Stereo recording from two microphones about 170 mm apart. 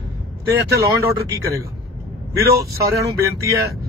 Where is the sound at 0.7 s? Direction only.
20° right (ahead or behind).